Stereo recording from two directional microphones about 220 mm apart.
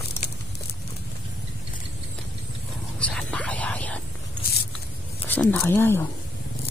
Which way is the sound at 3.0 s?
5° left (ahead or behind).